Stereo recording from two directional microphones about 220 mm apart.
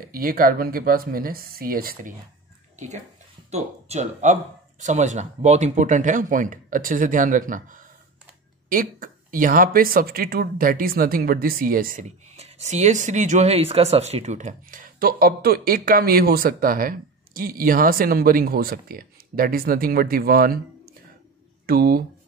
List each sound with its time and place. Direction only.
0.0 s speech: 40° right (ahead or behind)
3.5 s speech: 30° right (ahead or behind)
21.6 s speech: 45° right (ahead or behind)